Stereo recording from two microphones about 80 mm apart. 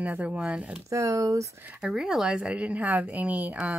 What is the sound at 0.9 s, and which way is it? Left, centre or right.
Speech, right.